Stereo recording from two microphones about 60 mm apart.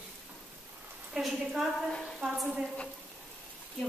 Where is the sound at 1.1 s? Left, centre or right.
Centre.